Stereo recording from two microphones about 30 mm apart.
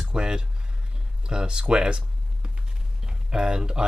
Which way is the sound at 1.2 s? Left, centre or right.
Right.